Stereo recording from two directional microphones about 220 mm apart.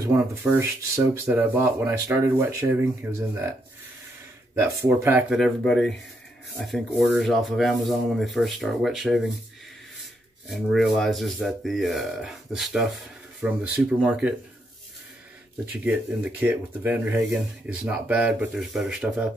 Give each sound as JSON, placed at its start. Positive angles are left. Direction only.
{"t": 0.0, "sound": "speech", "side_deg": -10}
{"t": 4.6, "sound": "speech", "side_deg": -10}
{"t": 10.5, "sound": "speech", "side_deg": 0}
{"t": 15.7, "sound": "speech", "side_deg": -5}